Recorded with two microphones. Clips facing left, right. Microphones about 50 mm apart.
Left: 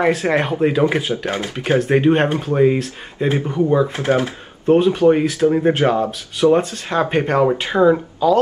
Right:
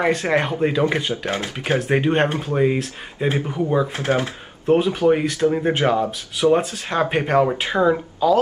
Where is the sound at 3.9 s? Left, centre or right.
Centre.